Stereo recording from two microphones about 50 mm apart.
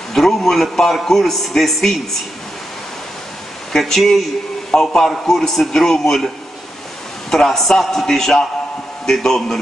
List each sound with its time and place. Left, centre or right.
0.1 s a man's voice: centre
3.7 s a man's voice: centre